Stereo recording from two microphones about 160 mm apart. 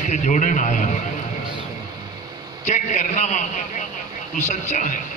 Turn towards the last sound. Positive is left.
turn(degrees=50)  # may be behind; listen again after turning